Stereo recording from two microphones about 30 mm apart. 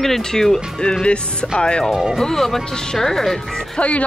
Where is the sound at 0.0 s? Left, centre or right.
Centre.